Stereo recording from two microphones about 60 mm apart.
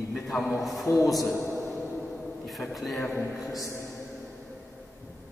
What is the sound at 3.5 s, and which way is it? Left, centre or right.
Speech, left.